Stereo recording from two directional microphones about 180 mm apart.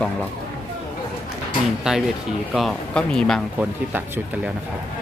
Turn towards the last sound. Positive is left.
turn(degrees=-10)  # may be behind; listen again after turning